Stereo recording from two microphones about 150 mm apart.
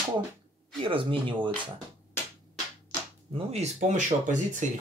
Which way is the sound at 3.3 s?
45° right (ahead or behind).